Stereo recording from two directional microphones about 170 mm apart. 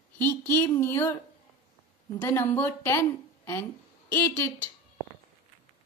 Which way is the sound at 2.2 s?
10° left (ahead or behind).